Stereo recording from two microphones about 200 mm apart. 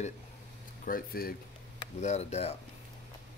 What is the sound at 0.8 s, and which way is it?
Speech, 45° left (ahead or behind).